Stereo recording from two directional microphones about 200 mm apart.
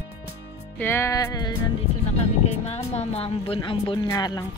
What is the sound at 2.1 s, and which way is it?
Speech, 35° left (ahead or behind).